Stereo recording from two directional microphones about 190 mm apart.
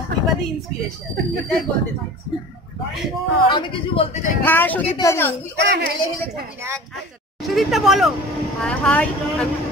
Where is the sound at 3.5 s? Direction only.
25° left (ahead or behind).